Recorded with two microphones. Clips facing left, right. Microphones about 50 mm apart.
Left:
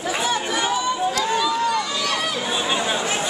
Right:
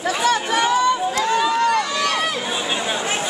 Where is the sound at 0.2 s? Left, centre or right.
Right.